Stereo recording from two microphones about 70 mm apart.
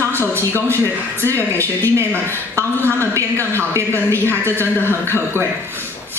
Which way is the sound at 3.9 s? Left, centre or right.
Left.